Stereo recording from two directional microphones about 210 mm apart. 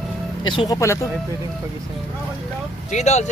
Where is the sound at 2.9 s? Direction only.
35° left (ahead or behind).